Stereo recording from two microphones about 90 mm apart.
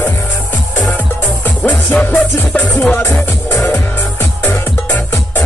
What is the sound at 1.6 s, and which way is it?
Music, 15° left (ahead or behind).